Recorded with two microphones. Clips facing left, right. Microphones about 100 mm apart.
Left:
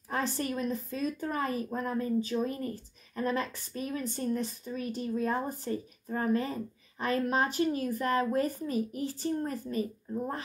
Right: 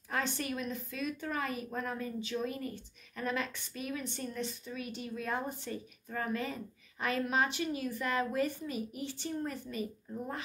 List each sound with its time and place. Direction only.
0.1 s speech: 35° left (ahead or behind)